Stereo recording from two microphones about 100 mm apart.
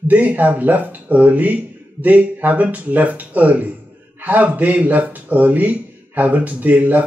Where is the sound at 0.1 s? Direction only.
15° right (ahead or behind).